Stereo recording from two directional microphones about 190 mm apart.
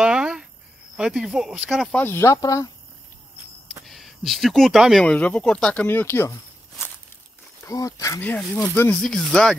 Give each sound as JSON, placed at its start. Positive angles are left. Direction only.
{"t": 0.0, "sound": "cricket", "side_deg": -5}
{"t": 0.9, "sound": "speech", "side_deg": -5}
{"t": 3.8, "sound": "speech", "side_deg": 0}
{"t": 7.6, "sound": "speech", "side_deg": 15}